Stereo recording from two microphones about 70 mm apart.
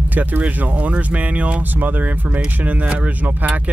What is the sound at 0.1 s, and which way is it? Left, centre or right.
Speech, right.